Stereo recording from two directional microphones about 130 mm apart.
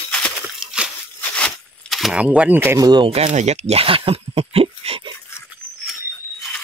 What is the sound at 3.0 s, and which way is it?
Speech, 55° right (ahead or behind).